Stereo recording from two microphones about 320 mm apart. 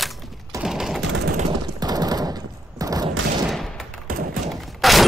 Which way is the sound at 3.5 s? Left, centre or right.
Centre.